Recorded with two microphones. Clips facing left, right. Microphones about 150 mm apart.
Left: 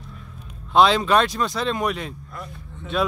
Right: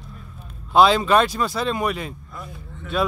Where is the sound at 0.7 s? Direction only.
Centre (ahead or behind).